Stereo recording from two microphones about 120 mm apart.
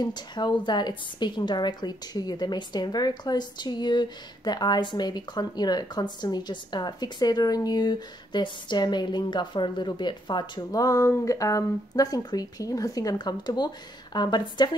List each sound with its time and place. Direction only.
0.0 s a woman's voice: 35° left (ahead or behind)